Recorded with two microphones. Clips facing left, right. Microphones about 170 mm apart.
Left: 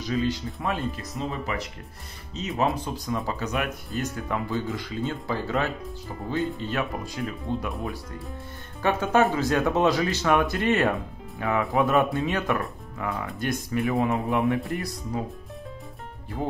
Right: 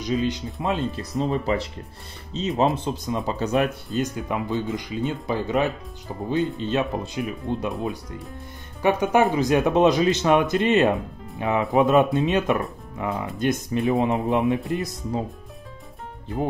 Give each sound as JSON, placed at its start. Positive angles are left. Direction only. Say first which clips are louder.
{"t": 0.0, "sound": "speech", "louder": "right 2 dB", "side_deg": -20}
{"t": 1.1, "sound": "speech", "louder": "right 10 dB", "side_deg": -35}
{"t": 4.0, "sound": "speech", "louder": "right 3 dB", "side_deg": -20}
{"t": 8.8, "sound": "speech", "louder": "right 3 dB", "side_deg": -15}